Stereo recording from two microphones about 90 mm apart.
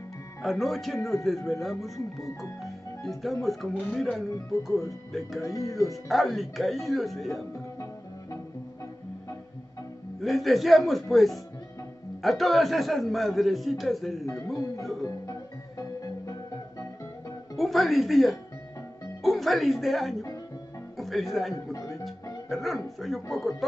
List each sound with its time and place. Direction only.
0.4 s a man's voice: centre (ahead or behind)
2.6 s music: centre (ahead or behind)
3.4 s a man's voice: 5° left (ahead or behind)
5.4 s speech: 35° left (ahead or behind)
6.0 s a man's voice: centre (ahead or behind)
10.2 s a man's voice: centre (ahead or behind)
15.8 s music: 40° left (ahead or behind)
17.6 s a man's voice: centre (ahead or behind)